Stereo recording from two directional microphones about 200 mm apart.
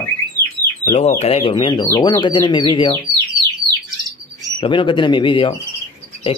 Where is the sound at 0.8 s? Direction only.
35° left (ahead or behind).